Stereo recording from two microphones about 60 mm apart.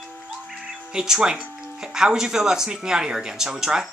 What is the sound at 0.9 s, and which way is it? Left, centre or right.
Speech, centre.